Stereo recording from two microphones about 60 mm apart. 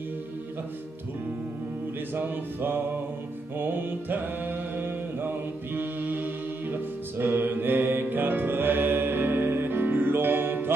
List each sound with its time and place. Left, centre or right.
2.1 s speech: right
3.5 s mantra: right